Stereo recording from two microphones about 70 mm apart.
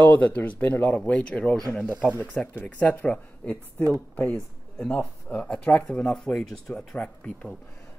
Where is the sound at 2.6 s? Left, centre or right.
Centre.